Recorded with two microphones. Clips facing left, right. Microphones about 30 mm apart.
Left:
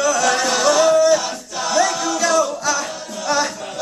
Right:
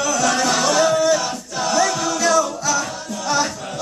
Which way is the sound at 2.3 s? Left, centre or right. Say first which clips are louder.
Even; left.